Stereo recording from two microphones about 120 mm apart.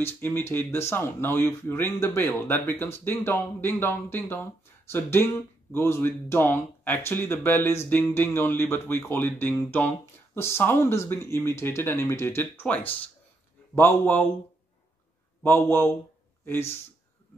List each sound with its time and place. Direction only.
0.0 s speech: 20° left (ahead or behind)
15.4 s speech: 20° left (ahead or behind)